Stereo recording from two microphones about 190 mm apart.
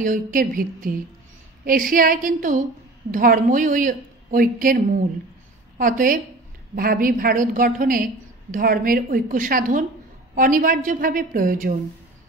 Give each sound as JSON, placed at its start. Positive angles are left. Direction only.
{"t": 0.0, "sound": "a woman's voice", "side_deg": -45}